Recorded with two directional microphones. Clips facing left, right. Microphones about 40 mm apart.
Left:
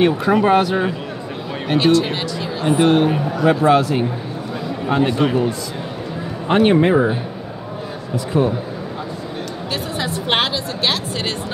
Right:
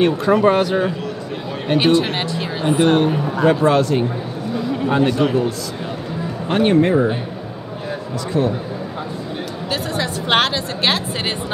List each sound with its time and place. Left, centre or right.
0.0 s speech: centre
1.8 s a woman's voice: right
2.6 s a man's voice: centre
8.3 s a man's voice: centre
10.5 s a woman's voice: right